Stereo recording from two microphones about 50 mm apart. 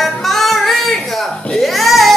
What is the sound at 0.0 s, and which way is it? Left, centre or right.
Music, centre.